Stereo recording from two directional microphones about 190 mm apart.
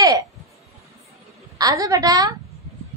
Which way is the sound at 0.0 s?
20° right (ahead or behind).